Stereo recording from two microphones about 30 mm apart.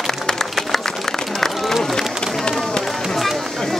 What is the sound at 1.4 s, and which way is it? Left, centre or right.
Run, centre.